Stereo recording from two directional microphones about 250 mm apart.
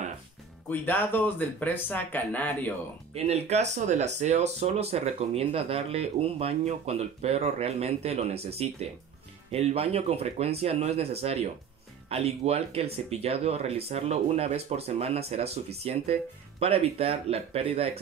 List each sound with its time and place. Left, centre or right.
0.7 s speech: centre
3.3 s speech: right